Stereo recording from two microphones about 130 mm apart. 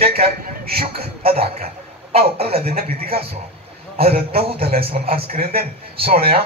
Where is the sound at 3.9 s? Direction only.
50° right (ahead or behind).